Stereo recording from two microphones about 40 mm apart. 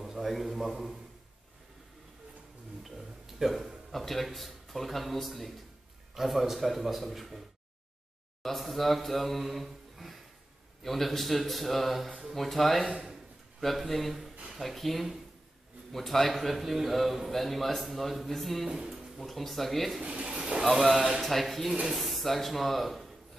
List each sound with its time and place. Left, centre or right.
0.0 s a man's voice: centre
3.3 s a man's voice: centre
8.4 s a sound: centre
10.8 s a man's voice: centre
20.0 s speech: right
20.6 s a man's voice: centre